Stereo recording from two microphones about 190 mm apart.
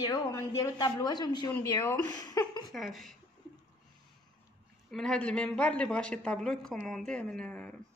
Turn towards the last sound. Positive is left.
turn(degrees=5)  # may be behind; listen again after turning